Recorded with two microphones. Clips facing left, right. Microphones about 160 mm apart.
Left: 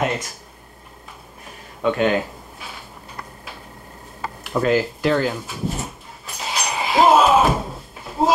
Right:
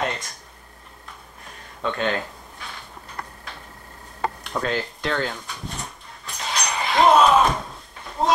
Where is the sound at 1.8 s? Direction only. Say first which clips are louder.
Left 6 dB; 10° left (ahead or behind).